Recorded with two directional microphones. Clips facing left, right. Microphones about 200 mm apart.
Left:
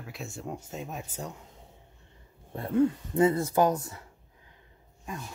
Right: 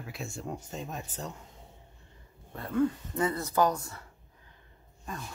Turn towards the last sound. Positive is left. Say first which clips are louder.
# left 1 dB
turn(degrees=10)  # may be behind; listen again after turning